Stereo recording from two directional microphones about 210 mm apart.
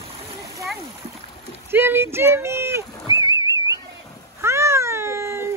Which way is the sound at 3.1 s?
15° right (ahead or behind).